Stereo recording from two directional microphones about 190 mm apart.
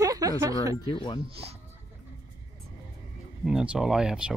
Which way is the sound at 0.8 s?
30° left (ahead or behind).